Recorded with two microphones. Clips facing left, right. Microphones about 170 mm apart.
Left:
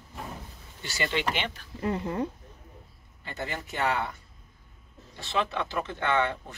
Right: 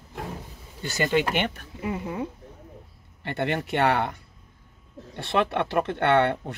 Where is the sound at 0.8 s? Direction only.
45° right (ahead or behind).